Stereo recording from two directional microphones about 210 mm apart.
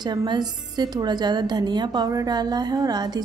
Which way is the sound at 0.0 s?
20° right (ahead or behind).